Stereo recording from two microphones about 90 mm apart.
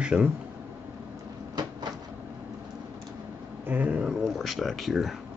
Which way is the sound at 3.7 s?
20° right (ahead or behind).